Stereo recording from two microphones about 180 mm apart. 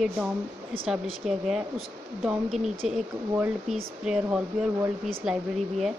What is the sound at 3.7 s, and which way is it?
Speech, 5° right (ahead or behind).